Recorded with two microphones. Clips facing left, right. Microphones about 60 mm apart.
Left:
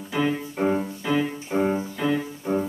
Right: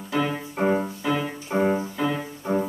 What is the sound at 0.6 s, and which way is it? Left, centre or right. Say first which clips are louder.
Music: right 3 dB; centre.